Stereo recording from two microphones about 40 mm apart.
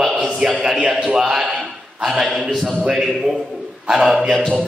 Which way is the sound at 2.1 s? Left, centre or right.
Centre.